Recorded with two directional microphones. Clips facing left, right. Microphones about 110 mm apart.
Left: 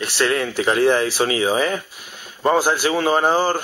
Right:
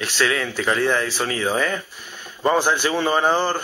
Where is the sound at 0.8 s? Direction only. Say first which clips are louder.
Left 6 dB; 35° left (ahead or behind).